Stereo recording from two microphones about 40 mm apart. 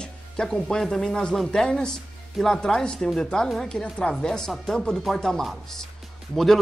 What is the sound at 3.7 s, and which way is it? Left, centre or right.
Speech, left.